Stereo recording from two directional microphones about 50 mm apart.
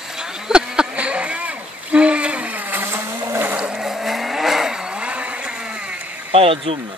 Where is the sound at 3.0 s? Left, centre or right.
Right.